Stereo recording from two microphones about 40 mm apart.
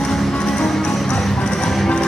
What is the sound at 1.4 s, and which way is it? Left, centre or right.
Music, centre.